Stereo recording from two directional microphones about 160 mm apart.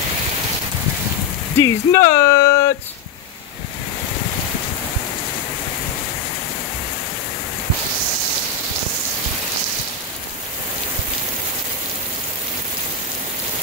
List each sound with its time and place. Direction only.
1.6 s speech: 20° left (ahead or behind)